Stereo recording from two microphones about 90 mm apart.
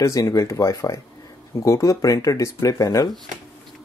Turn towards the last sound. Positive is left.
turn(degrees=40)  # may be behind; listen again after turning